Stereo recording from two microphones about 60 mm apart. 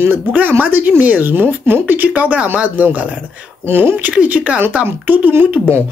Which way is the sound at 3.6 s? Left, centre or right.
Right.